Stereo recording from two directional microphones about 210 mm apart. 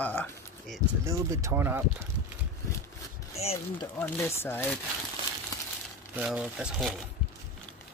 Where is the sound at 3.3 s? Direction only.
30° left (ahead or behind).